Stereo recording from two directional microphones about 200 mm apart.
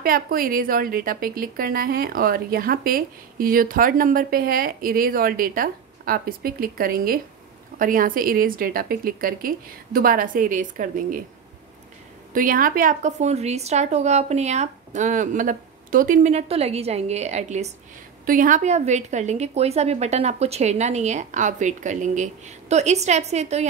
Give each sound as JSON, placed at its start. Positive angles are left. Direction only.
{"t": 0.0, "sound": "a woman's voice", "side_deg": -45}
{"t": 12.3, "sound": "a woman's voice", "side_deg": -45}